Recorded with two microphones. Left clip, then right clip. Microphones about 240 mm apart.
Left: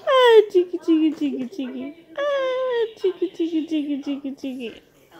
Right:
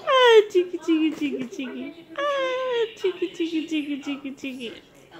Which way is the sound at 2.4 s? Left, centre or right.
Centre.